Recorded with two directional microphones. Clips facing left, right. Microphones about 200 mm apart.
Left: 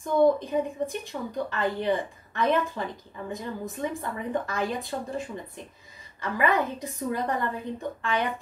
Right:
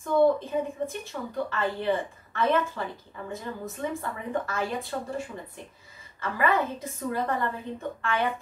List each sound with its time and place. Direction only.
0.0 s a woman's voice: 15° left (ahead or behind)